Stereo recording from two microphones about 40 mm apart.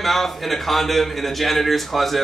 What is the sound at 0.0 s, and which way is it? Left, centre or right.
A man's voice, centre.